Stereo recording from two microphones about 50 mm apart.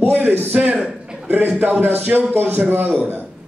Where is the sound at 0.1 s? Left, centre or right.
Right.